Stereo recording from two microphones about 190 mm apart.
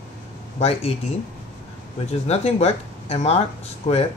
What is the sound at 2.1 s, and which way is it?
Speech, 35° left (ahead or behind).